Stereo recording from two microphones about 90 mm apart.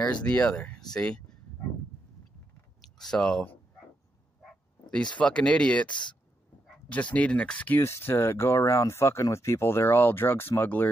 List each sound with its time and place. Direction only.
0.0 s speech: 15° left (ahead or behind)
2.8 s speech: 5° left (ahead or behind)
5.2 s speech: 10° left (ahead or behind)
5.9 s speech: 60° left (ahead or behind)
6.9 s speech: 15° left (ahead or behind)
7.8 s speech: 30° left (ahead or behind)